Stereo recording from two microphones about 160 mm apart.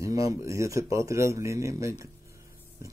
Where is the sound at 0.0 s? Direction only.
20° right (ahead or behind).